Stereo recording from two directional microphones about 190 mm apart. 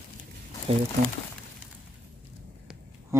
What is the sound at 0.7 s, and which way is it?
Speech, 30° right (ahead or behind).